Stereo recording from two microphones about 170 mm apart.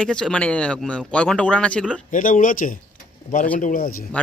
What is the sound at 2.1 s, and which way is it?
A man's voice, 50° left (ahead or behind).